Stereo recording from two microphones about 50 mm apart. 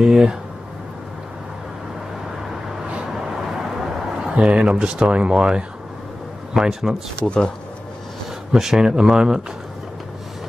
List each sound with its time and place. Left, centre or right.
0.0 s speech: centre
4.4 s speech: right
6.5 s speech: centre
7.2 s speech: centre
8.5 s speech: centre